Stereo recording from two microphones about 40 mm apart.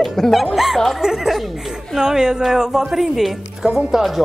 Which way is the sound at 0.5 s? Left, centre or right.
Centre.